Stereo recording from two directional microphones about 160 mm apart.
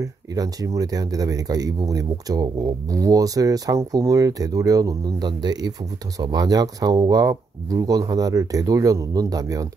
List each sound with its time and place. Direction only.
0.0 s speech: 20° right (ahead or behind)